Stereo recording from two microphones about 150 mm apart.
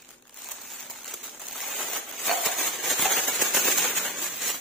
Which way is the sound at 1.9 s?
Centre (ahead or behind).